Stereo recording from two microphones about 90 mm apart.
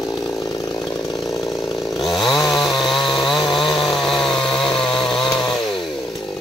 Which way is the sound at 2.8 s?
65° left (ahead or behind).